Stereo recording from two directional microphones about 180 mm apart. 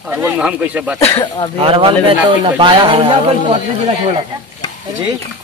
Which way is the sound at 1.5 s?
30° right (ahead or behind).